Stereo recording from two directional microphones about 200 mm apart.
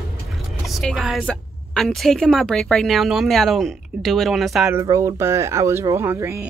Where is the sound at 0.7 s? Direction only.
Centre (ahead or behind).